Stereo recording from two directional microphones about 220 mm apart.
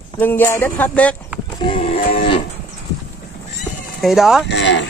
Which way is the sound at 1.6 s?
25° left (ahead or behind).